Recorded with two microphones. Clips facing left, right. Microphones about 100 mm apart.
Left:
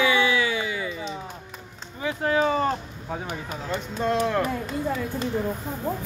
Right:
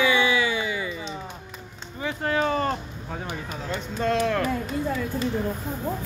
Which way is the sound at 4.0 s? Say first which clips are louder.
Even; 10° left (ahead or behind).